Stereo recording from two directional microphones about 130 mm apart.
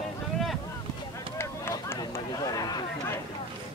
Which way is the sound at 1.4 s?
20° left (ahead or behind).